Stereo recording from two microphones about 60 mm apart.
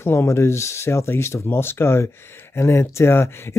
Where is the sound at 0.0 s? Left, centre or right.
Left.